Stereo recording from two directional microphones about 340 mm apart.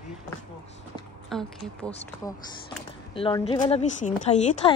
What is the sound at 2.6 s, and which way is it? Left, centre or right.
A woman's voice, centre.